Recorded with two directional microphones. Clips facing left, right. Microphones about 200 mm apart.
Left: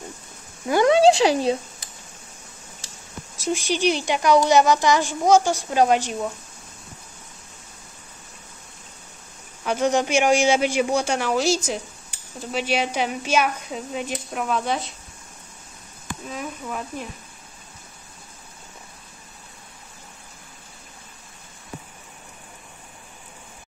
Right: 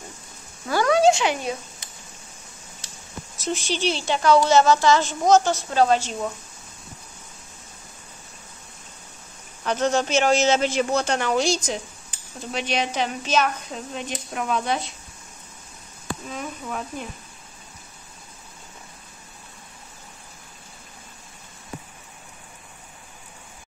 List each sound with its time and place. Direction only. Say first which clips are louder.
0.7 s a woman's voice: left 3 dB; 20° left (ahead or behind)
3.3 s a woman's voice: left 3 dB; 10° left (ahead or behind)
9.7 s a woman's voice: left 1 dB; 15° left (ahead or behind)
16.3 s speech: left 3 dB; centre (ahead or behind)